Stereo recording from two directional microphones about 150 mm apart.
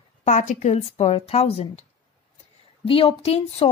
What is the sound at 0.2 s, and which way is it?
Speech, 50° left (ahead or behind).